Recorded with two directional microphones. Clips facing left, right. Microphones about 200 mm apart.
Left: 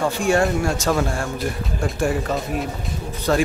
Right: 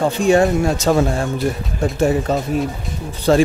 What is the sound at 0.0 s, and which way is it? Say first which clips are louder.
Speech: right 5 dB; 20° right (ahead or behind).